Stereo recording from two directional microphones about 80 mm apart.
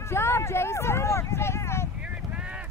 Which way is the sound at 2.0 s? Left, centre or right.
Centre.